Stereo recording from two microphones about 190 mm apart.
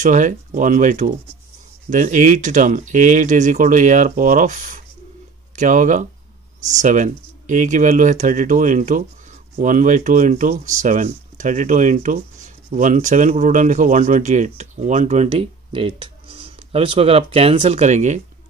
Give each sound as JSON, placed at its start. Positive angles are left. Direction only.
{"t": 0.0, "sound": "speech", "side_deg": -40}